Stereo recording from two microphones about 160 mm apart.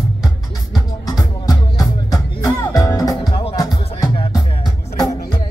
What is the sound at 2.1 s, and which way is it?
Music, 25° left (ahead or behind).